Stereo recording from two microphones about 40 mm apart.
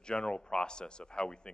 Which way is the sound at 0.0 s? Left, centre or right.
Left.